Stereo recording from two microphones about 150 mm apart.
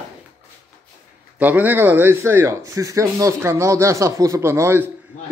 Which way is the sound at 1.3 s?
10° right (ahead or behind).